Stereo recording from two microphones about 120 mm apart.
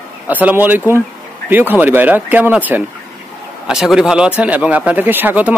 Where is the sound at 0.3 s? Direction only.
15° right (ahead or behind).